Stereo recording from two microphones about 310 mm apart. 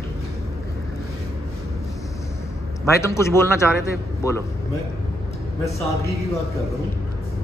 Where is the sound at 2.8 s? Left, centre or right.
Centre.